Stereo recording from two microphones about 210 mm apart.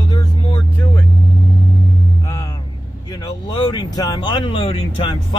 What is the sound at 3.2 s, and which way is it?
Speech, 20° left (ahead or behind).